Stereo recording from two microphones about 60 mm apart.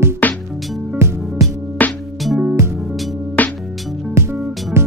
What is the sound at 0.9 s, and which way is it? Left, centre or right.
Music, right.